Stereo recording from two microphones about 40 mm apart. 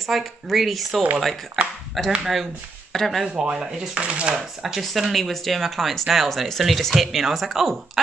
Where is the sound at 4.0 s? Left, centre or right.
Right.